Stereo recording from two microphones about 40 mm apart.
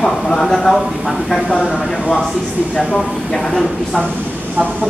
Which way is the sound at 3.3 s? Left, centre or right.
Centre.